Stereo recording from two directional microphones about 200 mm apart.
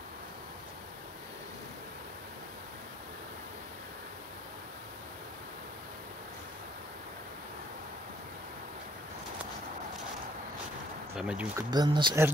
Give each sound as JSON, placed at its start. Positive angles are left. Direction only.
{"t": 11.1, "sound": "speech", "side_deg": -5}
{"t": 11.7, "sound": "speech", "side_deg": -20}